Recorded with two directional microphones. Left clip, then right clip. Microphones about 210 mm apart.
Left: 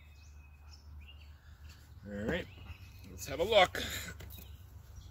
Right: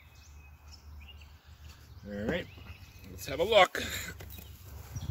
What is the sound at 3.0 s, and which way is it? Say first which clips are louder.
Speech: right 3 dB; 5° left (ahead or behind).